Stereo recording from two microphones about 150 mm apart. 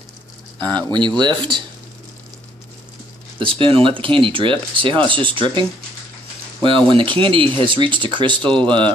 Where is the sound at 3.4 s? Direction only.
35° right (ahead or behind).